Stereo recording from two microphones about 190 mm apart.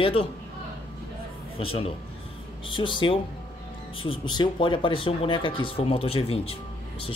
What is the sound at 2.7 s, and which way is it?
Speech, 25° left (ahead or behind).